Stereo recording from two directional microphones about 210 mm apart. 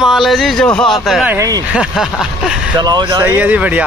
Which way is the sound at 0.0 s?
Centre (ahead or behind).